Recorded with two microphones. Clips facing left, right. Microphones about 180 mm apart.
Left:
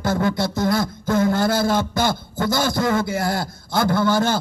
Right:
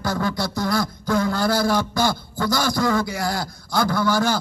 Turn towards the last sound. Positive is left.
turn(degrees=25)  # may be behind; listen again after turning